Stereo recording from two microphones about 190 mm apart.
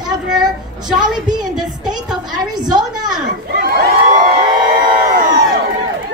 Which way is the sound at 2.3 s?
20° right (ahead or behind).